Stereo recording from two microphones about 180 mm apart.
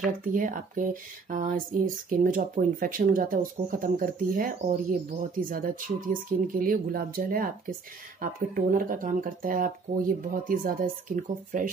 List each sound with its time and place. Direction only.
0.3 s speech: 50° right (ahead or behind)